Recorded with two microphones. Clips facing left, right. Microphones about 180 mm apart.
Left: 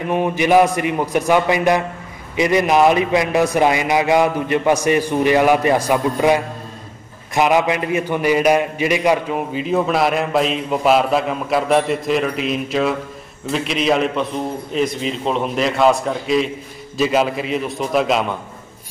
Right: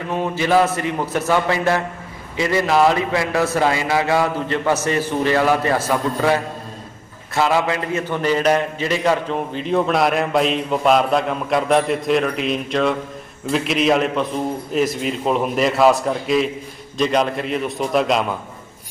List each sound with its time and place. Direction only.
0.1 s a man's voice: 15° left (ahead or behind); by 18.2 s centre (ahead or behind)